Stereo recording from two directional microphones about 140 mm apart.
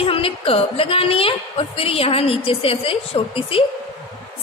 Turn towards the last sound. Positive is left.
turn(degrees=40)  # may be behind; listen again after turning